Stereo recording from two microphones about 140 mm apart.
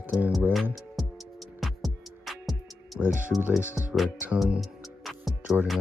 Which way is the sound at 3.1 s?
65° right (ahead or behind).